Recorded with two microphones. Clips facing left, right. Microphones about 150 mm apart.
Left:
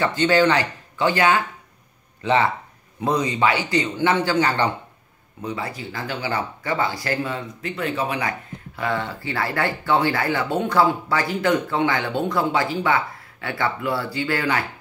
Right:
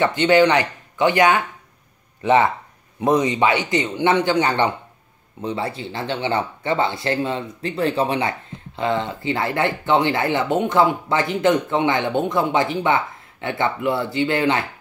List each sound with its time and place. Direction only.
0.0 s speech: 20° right (ahead or behind)